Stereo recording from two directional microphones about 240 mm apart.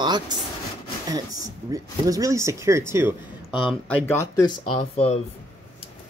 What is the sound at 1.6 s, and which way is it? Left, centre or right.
Speech, centre.